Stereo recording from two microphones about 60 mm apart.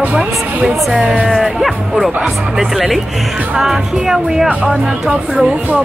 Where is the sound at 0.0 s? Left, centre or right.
Right.